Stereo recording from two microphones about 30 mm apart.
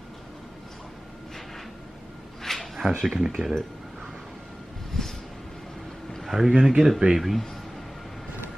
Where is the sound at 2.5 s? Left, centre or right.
Centre.